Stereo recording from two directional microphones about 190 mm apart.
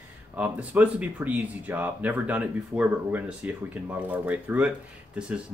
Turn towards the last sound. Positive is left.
turn(degrees=-5)  # may be behind; listen again after turning